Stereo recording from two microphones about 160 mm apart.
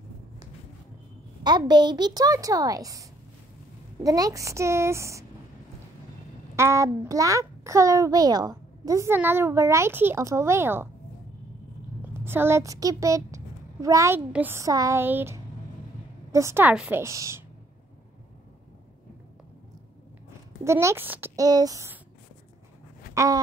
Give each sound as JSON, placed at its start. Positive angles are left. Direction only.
{"t": 1.4, "sound": "a child's voice", "side_deg": -25}
{"t": 6.5, "sound": "a child's voice", "side_deg": -15}
{"t": 12.0, "sound": "speech", "side_deg": -15}
{"t": 17.0, "sound": "a child's voice", "side_deg": -20}
{"t": 20.6, "sound": "speech", "side_deg": -15}
{"t": 21.5, "sound": "a child's voice", "side_deg": -25}
{"t": 23.1, "sound": "a sound", "side_deg": -20}